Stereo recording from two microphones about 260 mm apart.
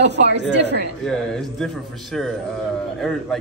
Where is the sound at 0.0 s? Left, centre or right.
Right.